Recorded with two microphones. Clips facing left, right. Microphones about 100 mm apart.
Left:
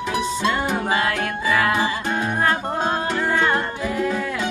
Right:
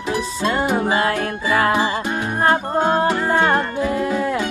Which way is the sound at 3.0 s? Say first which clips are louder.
Right 4 dB; 45° right (ahead or behind).